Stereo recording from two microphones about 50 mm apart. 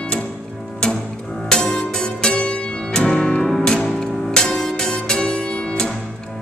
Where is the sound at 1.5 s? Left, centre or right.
Centre.